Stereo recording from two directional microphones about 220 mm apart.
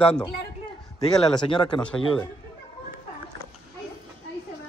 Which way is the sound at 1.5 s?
20° left (ahead or behind).